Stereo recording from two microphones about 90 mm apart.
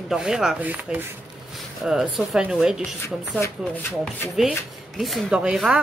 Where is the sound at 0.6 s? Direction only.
15° right (ahead or behind).